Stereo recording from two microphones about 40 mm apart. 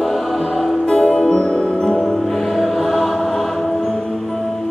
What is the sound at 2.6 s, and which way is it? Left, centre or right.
Music, centre.